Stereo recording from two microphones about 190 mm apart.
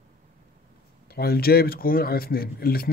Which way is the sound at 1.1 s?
55° left (ahead or behind).